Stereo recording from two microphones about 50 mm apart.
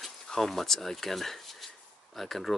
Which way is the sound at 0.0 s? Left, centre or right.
Centre.